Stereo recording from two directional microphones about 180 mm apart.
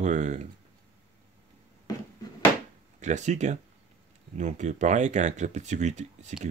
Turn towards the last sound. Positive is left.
turn(degrees=-40)  # may be behind; listen again after turning